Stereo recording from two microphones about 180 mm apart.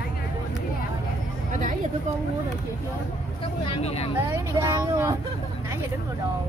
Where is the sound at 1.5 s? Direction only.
45° right (ahead or behind).